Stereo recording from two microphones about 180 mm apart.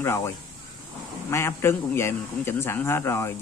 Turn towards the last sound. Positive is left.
turn(degrees=15)  # may be behind; listen again after turning